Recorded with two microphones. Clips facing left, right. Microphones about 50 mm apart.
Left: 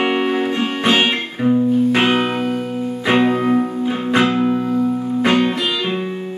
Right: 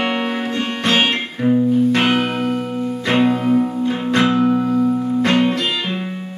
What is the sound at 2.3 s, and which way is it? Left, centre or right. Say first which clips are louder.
Music: even; centre.